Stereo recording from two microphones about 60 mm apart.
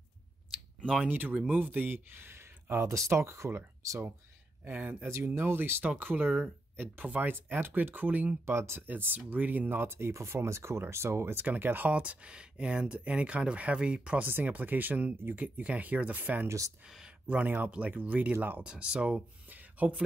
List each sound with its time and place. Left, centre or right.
1.0 s speech: right
2.9 s speech: right
4.6 s speech: right
5.0 s speech: right
8.5 s speech: right
8.8 s speech: right
11.4 s speech: right
11.9 s speech: right
14.2 s speech: right
16.4 s speech: right
17.3 s speech: right
18.6 s speech: centre